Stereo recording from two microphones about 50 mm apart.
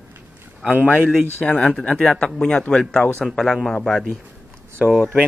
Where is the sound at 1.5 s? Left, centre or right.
Centre.